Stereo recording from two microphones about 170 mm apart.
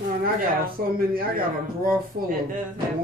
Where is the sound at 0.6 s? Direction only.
60° right (ahead or behind).